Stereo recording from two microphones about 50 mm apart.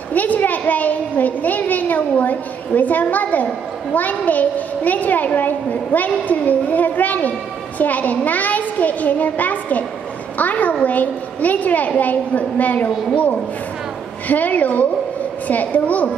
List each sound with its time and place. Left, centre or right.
0.1 s a child's voice: left